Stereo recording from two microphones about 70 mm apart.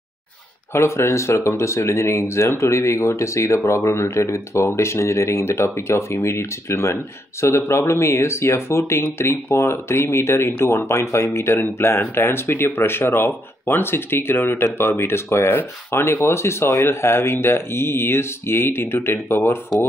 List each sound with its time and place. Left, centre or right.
0.7 s speech: left